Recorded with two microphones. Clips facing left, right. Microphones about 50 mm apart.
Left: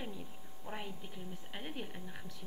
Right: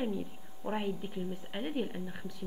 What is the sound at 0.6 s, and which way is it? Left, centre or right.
Speech, right.